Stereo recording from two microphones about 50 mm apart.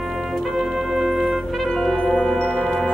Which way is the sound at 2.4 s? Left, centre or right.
Left.